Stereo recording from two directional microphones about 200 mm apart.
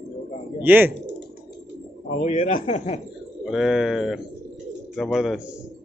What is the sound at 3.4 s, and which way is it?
Speech, centre (ahead or behind).